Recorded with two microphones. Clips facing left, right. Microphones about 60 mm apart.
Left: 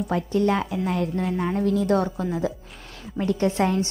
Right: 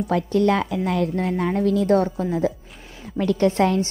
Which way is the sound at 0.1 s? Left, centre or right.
Right.